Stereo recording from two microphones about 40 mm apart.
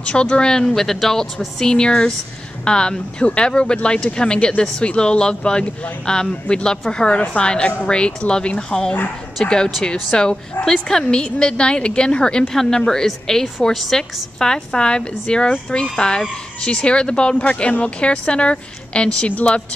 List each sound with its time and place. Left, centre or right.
0.0 s speech: left
0.7 s a woman's voice: centre; by 19.3 s left